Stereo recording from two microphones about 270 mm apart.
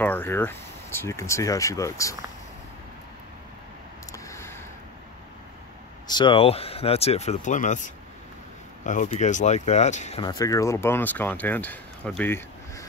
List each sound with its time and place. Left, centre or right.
0.0 s speech: centre
4.1 s a sound: centre
6.0 s speech: centre